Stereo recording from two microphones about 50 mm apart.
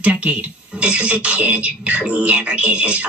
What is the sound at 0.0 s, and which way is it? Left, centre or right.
Speech, right.